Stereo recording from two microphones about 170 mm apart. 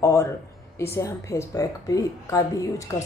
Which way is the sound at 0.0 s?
15° left (ahead or behind).